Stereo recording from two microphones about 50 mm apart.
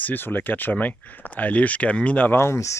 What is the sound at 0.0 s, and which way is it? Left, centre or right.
Speech, left.